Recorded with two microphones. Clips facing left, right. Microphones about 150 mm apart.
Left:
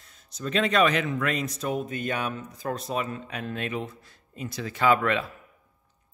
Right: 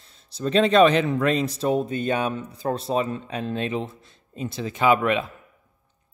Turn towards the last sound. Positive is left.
turn(degrees=-20)  # may be behind; listen again after turning